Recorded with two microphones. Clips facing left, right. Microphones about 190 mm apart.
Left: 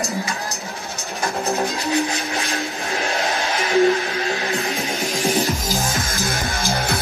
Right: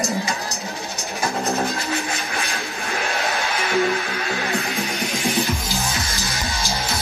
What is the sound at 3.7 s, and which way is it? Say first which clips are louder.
Music: left 6 dB; 40° left (ahead or behind).